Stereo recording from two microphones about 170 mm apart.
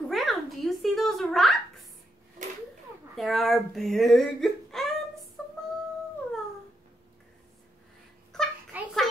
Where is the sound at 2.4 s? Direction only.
50° right (ahead or behind).